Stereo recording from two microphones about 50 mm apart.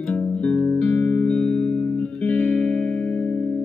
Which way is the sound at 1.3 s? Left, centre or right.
Centre.